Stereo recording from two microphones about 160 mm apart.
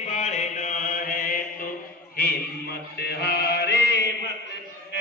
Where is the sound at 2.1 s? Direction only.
75° left (ahead or behind); by 4.3 s 90° left.